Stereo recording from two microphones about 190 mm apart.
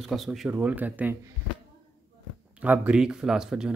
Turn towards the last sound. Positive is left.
turn(degrees=-5)  # may be behind; listen again after turning